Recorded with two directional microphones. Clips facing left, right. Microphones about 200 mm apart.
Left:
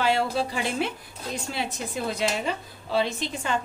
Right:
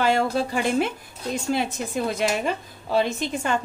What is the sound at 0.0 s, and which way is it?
A woman's voice, 50° right (ahead or behind).